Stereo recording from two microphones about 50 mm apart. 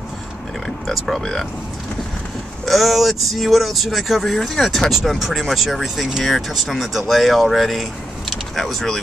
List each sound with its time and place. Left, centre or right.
0.8 s speech: centre
2.6 s speech: centre